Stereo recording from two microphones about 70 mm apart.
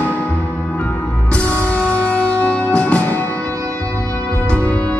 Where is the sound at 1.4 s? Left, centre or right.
Centre.